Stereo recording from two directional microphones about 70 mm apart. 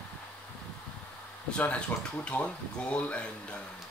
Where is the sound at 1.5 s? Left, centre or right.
Centre.